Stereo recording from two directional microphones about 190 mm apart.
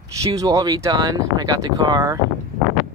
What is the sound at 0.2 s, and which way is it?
Speech, 20° right (ahead or behind).